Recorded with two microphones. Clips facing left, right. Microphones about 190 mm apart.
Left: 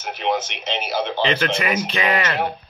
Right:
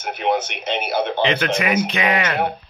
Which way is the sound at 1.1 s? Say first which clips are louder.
Left 1 dB; 15° right (ahead or behind).